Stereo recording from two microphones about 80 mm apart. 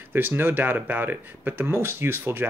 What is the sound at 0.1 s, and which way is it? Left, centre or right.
Speech, right.